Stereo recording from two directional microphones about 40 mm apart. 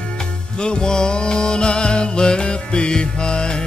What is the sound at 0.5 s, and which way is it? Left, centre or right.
Music, left.